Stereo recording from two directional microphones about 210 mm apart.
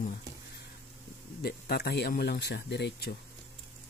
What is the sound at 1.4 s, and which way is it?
Speech, 50° left (ahead or behind).